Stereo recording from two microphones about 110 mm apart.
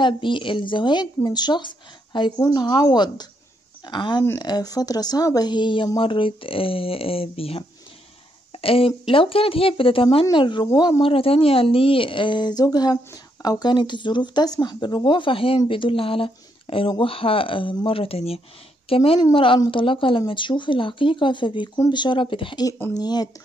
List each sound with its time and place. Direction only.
0.0 s speech: 50° left (ahead or behind)
8.5 s a sound: 60° left (ahead or behind)
9.1 s speech: 55° left (ahead or behind); by 11.0 s 40° left (ahead or behind)
11.0 s speech: 55° left (ahead or behind)
22.9 s speech: 35° left (ahead or behind)